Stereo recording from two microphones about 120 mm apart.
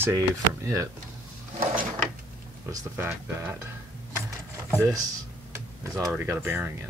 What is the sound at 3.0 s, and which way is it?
Speech, 20° right (ahead or behind).